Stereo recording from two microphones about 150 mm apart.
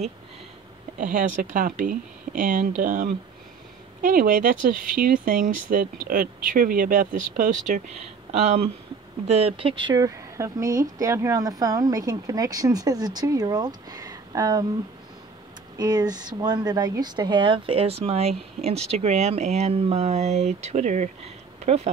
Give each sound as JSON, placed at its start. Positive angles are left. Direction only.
{"t": 0.9, "sound": "speech", "side_deg": -65}
{"t": 8.3, "sound": "speech", "side_deg": -45}
{"t": 9.9, "sound": "speech", "side_deg": -20}
{"t": 15.8, "sound": "speech", "side_deg": -25}